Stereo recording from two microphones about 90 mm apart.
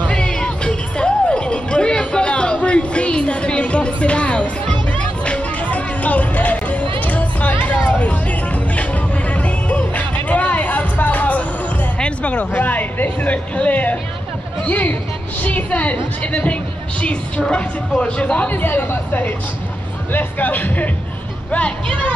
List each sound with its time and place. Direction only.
0.0 s music: 10° left (ahead or behind)
12.0 s a sound: 15° left (ahead or behind)
12.5 s music: 20° left (ahead or behind)
14.7 s a woman's voice: 20° left (ahead or behind)